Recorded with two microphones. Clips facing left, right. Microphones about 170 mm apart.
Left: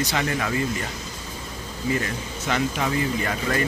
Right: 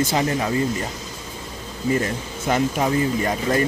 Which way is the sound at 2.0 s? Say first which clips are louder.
Right 4 dB; 35° right (ahead or behind).